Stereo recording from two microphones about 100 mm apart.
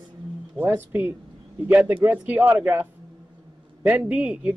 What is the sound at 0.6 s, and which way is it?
Speech, 20° right (ahead or behind).